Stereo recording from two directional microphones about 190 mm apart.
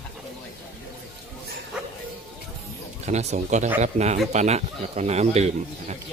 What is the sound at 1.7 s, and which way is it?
Bow-wow, 5° right (ahead or behind).